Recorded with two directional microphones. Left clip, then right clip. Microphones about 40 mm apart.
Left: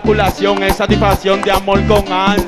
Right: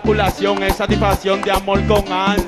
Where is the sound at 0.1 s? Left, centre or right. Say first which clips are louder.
Left 3 dB; left.